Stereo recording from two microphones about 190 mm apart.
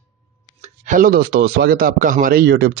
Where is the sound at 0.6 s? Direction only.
40° right (ahead or behind).